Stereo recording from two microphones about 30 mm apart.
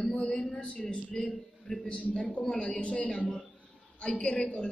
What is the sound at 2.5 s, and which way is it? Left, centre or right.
Speech, left.